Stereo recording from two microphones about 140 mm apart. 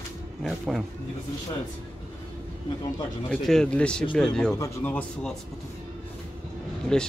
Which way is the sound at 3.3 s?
5° left (ahead or behind).